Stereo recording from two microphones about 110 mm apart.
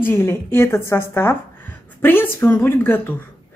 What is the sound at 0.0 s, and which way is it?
Speech, 20° left (ahead or behind).